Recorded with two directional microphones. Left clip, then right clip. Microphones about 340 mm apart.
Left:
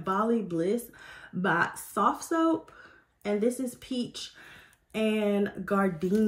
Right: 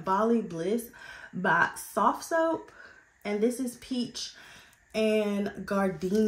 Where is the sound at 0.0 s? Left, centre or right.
Centre.